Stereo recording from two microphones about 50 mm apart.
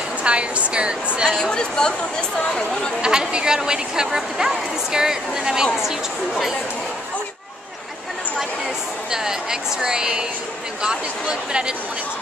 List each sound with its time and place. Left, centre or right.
0.2 s a woman's voice: right
1.4 s speech: centre
3.0 s speech: centre
9.1 s speech: centre